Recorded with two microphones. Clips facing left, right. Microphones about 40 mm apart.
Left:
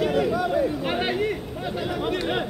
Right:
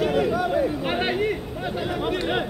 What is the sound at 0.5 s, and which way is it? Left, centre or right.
Chatter, centre.